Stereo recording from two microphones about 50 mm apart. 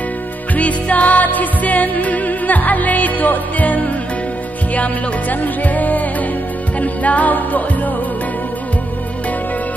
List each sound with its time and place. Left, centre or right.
0.6 s music: left